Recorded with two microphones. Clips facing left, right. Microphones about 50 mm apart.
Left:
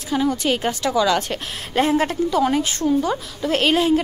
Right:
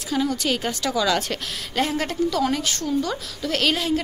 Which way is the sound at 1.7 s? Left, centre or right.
Left.